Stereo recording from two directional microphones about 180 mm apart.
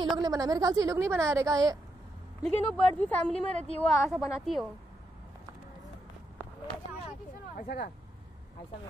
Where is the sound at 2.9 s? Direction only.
10° left (ahead or behind).